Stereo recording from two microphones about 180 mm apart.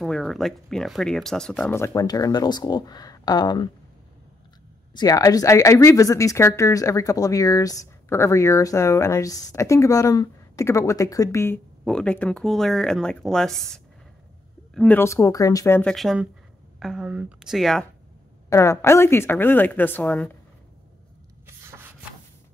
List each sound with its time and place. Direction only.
0.0 s speech: centre (ahead or behind); by 3.7 s 25° left (ahead or behind)
4.9 s speech: 20° left (ahead or behind); by 15.0 s centre (ahead or behind)
15.0 s speech: 15° left (ahead or behind)
15.9 s speech: centre (ahead or behind)
18.5 s speech: 15° left (ahead or behind)